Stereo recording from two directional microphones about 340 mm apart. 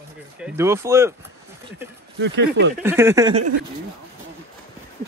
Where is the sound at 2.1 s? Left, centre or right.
Right.